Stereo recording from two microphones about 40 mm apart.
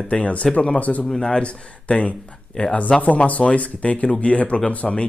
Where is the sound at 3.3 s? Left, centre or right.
Left.